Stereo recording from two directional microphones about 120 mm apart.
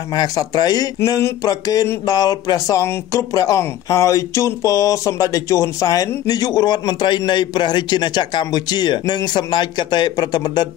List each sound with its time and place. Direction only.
0.1 s speech: 35° left (ahead or behind)